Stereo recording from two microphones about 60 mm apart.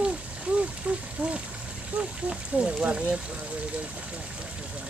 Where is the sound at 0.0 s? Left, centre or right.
Centre.